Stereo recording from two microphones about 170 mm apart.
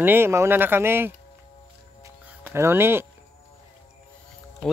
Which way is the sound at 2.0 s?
10° right (ahead or behind).